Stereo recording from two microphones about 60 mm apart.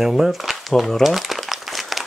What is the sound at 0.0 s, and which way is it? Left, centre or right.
Speech, centre.